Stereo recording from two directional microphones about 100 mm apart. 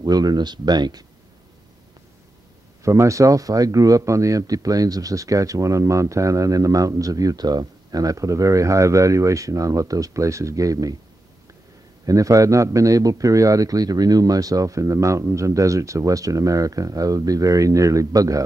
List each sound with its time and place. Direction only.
0.0 s speech: 40° right (ahead or behind)
2.8 s speech: 30° right (ahead or behind)
12.1 s speech: 35° right (ahead or behind)